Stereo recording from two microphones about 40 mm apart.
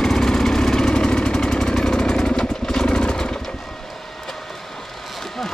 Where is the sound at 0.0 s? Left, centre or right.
Centre.